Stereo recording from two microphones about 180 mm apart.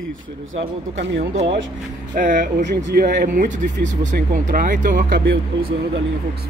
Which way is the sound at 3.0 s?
50° right (ahead or behind).